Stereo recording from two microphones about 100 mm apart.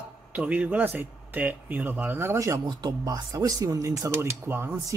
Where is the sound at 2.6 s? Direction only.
45° right (ahead or behind).